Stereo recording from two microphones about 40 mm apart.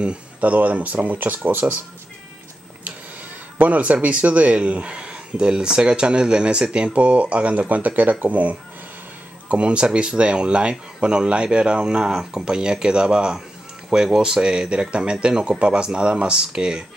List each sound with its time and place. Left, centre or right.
0.4 s speech: right
1.1 s speech: right
3.5 s speech: right
9.5 s speech: right